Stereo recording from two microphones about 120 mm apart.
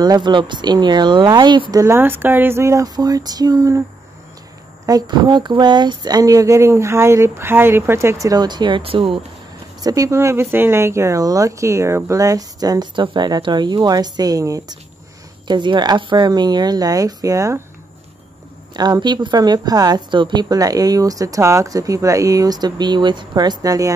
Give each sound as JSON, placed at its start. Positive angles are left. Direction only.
{"t": 0.0, "sound": "a woman's voice", "side_deg": -35}
{"t": 4.8, "sound": "speech", "side_deg": -35}
{"t": 9.8, "sound": "a woman's voice", "side_deg": -30}
{"t": 18.7, "sound": "a woman's voice", "side_deg": -35}